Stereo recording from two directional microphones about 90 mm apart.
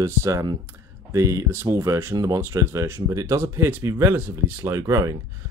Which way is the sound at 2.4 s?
30° right (ahead or behind).